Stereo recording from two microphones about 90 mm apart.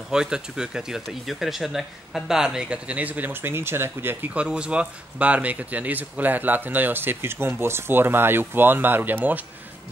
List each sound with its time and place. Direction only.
0.1 s speech: 10° right (ahead or behind)